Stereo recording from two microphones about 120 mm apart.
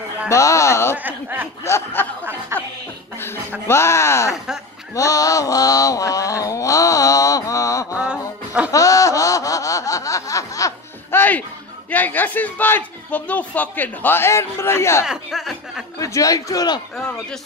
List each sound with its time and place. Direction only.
0.3 s a sound: 25° left (ahead or behind)
0.9 s speech: 15° right (ahead or behind)
1.6 s a man's voice: 20° left (ahead or behind)
2.5 s music: 20° right (ahead or behind)
3.6 s a man's voice: 20° left (ahead or behind)
4.9 s a sound: 30° left (ahead or behind)
7.9 s music: 10° right (ahead or behind)
8.7 s snicker: 30° left (ahead or behind)
11.9 s a man's voice: 15° left (ahead or behind)
15.0 s speech: 5° right (ahead or behind)
16.0 s a man's voice: 30° left (ahead or behind)